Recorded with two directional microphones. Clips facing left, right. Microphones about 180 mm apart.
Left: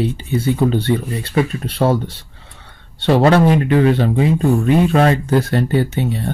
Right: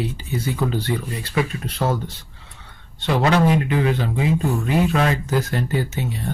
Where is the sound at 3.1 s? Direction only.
40° left (ahead or behind).